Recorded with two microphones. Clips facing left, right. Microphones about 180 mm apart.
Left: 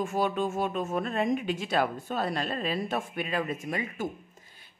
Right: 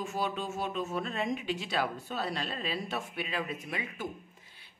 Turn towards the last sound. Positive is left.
turn(degrees=45)  # may be behind; listen again after turning